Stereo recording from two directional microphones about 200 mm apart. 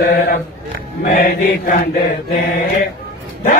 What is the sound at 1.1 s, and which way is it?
Mantra, 40° left (ahead or behind).